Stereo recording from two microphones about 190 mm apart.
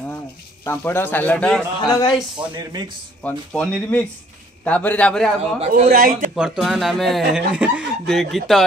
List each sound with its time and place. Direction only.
0.7 s a man's voice: 10° left (ahead or behind)
1.8 s speech: 20° left (ahead or behind)
2.3 s speech: 25° right (ahead or behind)
3.2 s a man's voice: 5° left (ahead or behind)
5.9 s a man's voice: 50° right (ahead or behind)
6.3 s speech: 5° right (ahead or behind)